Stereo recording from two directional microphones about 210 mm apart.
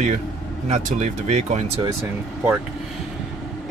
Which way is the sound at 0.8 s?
35° right (ahead or behind).